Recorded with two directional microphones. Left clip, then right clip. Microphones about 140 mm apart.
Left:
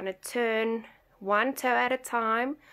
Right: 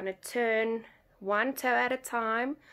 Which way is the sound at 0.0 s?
20° left (ahead or behind).